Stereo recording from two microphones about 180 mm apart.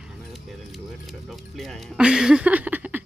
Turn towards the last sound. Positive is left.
turn(degrees=-10)  # may be behind; listen again after turning